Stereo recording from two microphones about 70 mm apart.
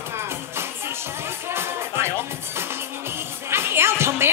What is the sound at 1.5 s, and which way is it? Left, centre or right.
Music, right.